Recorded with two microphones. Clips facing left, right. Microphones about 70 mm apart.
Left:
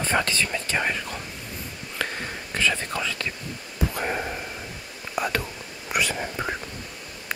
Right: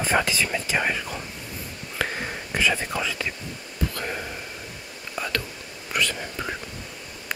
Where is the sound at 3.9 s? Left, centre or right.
Centre.